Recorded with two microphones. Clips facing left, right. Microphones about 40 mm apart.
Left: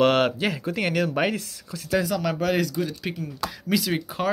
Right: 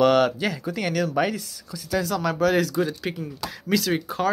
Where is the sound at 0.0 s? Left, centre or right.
Left.